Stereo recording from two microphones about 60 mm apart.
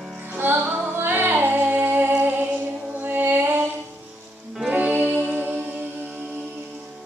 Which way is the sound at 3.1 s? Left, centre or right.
Right.